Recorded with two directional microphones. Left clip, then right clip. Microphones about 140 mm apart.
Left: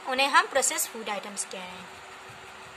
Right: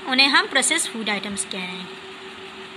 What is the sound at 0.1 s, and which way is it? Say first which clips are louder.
A woman's voice: right 5 dB; 20° left (ahead or behind).